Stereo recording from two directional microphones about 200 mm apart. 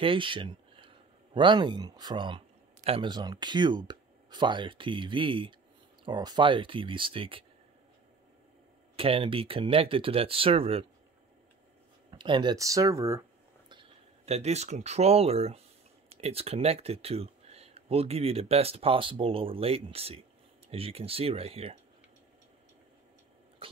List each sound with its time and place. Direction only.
0.0 s speech: 25° right (ahead or behind)
8.9 s speech: 30° right (ahead or behind)
12.1 s speech: 25° right (ahead or behind)
13.7 s speech: 25° right (ahead or behind)
23.6 s dog: 30° right (ahead or behind)